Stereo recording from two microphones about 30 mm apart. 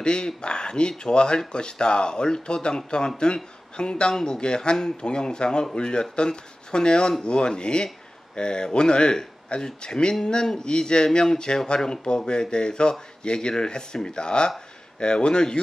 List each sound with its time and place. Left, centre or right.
0.0 s speech: left
4.1 s speech: centre